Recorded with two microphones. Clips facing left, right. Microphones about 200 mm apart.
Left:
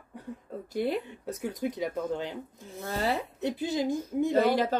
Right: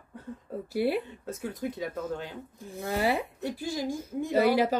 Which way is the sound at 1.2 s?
15° left (ahead or behind).